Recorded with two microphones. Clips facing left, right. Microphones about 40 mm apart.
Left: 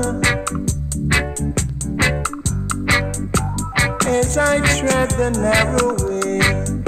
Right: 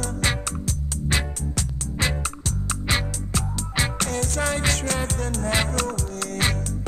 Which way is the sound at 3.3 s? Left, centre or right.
Left.